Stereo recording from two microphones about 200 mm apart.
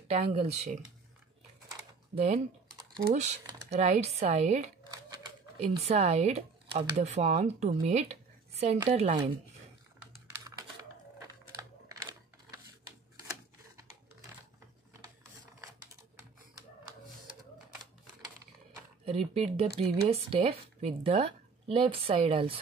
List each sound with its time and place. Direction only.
0.1 s speech: 30° right (ahead or behind)
2.1 s speech: 35° right (ahead or behind)
3.7 s speech: 35° right (ahead or behind)
19.0 s speech: 35° right (ahead or behind)